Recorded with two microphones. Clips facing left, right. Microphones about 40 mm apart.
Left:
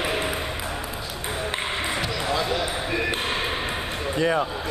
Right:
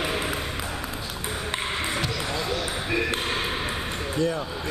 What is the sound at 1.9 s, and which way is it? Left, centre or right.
Basketball bounce, centre.